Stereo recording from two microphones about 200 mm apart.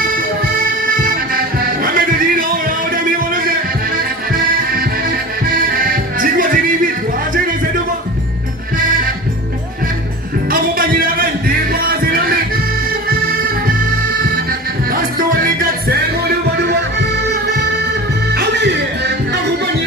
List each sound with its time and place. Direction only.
0.8 s music: 45° right (ahead or behind)
10.5 s music: 45° right (ahead or behind)
14.9 s music: 45° right (ahead or behind)
18.3 s music: 60° right (ahead or behind)